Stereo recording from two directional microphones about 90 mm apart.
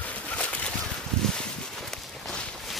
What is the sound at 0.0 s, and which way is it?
Bird, 15° left (ahead or behind).